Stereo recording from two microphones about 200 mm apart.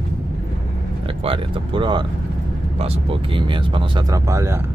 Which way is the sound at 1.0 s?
25° right (ahead or behind).